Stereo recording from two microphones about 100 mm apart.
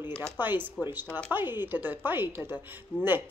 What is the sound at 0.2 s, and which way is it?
Speech, 20° right (ahead or behind).